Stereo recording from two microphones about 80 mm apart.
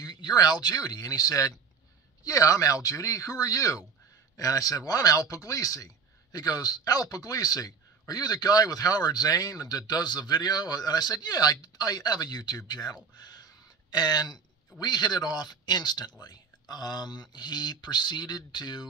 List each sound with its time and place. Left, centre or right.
0.0 s speech: left